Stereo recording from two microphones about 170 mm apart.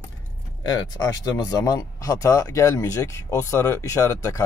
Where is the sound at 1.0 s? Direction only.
20° left (ahead or behind).